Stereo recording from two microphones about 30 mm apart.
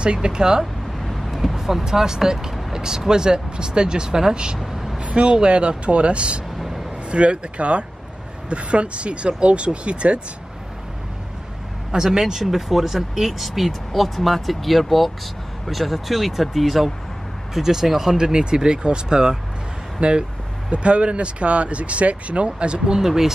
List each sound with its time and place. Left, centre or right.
0.0 s speech: right
0.9 s vehicle: centre
1.9 s speech: centre
4.6 s vehicle: centre
5.0 s speech: right
11.9 s speech: centre
17.6 s speech: centre; by 22.5 s right
22.6 s speech: right
22.9 s speech: centre